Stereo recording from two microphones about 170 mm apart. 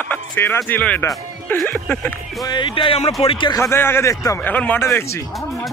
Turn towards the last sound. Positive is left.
turn(degrees=15)  # may be behind; listen again after turning